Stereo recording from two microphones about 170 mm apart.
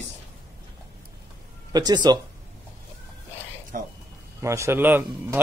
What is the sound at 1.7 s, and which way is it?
Speech, 25° right (ahead or behind).